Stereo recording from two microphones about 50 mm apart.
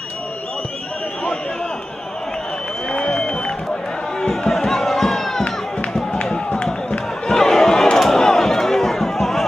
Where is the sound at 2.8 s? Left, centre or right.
Centre.